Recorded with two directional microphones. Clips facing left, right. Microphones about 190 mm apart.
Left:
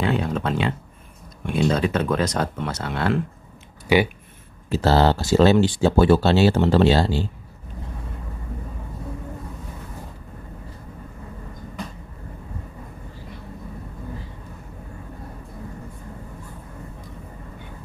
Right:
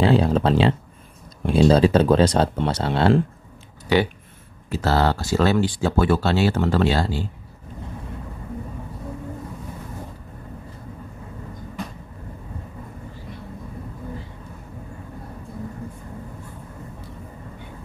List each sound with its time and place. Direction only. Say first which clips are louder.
0.0 s speech: right 5 dB; 30° right (ahead or behind)
4.6 s speech: left 3 dB; 30° left (ahead or behind)